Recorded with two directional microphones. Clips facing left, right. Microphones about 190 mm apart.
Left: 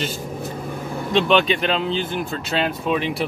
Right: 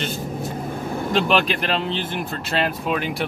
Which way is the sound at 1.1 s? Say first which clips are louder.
Left 3 dB; centre (ahead or behind).